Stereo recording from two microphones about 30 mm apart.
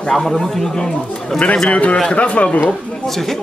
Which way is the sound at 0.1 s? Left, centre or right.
Centre.